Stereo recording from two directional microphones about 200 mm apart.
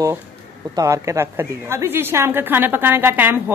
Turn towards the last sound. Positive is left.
turn(degrees=-10)  # may be behind; listen again after turning